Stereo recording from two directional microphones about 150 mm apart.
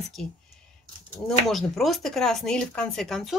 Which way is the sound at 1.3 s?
Centre (ahead or behind).